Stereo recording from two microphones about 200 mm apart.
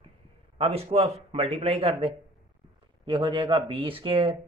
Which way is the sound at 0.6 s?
30° right (ahead or behind).